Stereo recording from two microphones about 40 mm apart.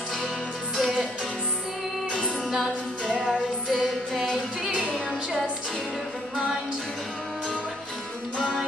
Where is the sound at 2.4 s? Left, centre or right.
Centre.